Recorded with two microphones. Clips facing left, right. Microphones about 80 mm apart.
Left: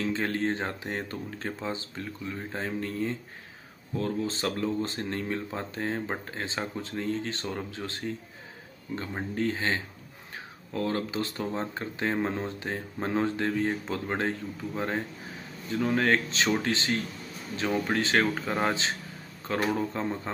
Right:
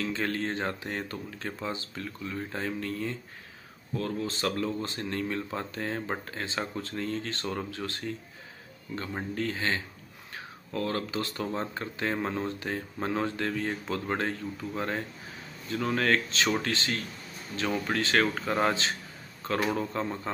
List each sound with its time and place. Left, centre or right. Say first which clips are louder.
0.0 s speech: left 2 dB; left
18.2 s speech: right 1 dB; centre